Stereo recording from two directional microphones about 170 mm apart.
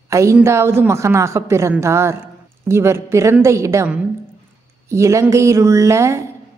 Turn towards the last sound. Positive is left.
turn(degrees=-15)  # may be behind; listen again after turning